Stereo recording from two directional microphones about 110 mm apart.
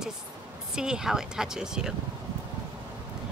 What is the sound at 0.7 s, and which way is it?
Speech, 5° right (ahead or behind).